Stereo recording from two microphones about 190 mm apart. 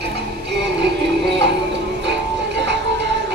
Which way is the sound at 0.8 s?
65° right (ahead or behind).